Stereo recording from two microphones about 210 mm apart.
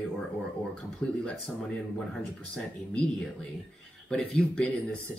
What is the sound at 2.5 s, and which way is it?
Speech, 5° left (ahead or behind).